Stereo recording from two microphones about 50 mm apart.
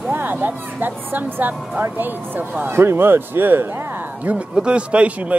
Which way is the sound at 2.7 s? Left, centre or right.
Right.